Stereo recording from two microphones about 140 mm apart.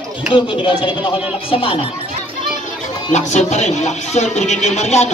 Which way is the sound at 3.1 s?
55° left (ahead or behind).